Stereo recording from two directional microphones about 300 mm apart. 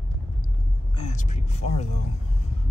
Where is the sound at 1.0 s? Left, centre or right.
Left.